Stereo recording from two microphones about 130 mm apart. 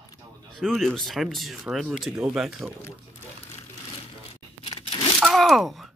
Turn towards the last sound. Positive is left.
turn(degrees=0)  # may be behind; listen again after turning